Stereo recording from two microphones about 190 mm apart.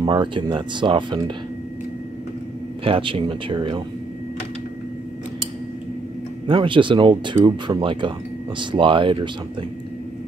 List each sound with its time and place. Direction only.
0.0 s speech: 25° right (ahead or behind)
2.8 s speech: 25° right (ahead or behind)
6.4 s speech: 25° right (ahead or behind)